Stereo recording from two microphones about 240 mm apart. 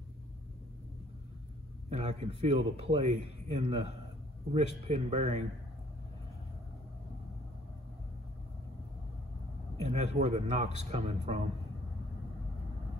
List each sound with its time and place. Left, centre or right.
1.9 s a man's voice: right
9.8 s a man's voice: right